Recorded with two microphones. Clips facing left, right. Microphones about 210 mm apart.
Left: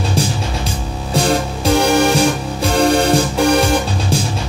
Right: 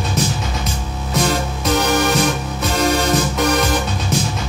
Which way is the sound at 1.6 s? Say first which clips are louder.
Left 4 dB; 30° left (ahead or behind).